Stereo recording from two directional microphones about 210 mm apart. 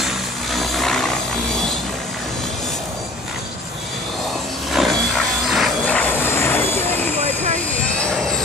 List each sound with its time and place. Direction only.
0.0 s helicopter: centre (ahead or behind)
4.7 s vehicle: centre (ahead or behind)
7.2 s vehicle: 30° right (ahead or behind)
8.0 s vehicle: 5° left (ahead or behind)